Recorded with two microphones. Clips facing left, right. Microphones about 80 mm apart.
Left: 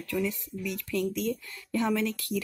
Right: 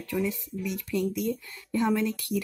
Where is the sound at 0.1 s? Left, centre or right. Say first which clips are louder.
Right 1 dB; centre.